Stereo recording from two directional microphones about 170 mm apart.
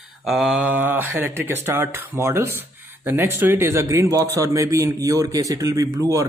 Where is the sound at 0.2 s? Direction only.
Centre (ahead or behind).